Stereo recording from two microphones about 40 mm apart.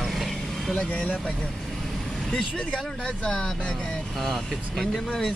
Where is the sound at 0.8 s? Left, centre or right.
Left.